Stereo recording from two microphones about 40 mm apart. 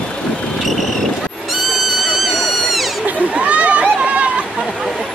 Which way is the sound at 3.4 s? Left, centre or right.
Right.